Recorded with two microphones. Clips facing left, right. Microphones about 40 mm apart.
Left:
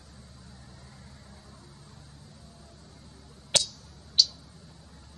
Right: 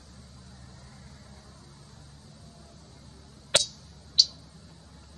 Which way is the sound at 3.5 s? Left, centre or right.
Right.